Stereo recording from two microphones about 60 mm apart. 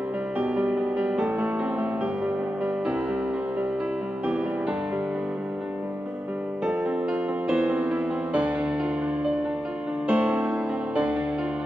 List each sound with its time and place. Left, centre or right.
0.4 s music: right
7.1 s music: centre
10.0 s music: centre